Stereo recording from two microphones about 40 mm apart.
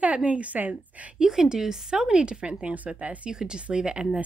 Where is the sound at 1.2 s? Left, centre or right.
Centre.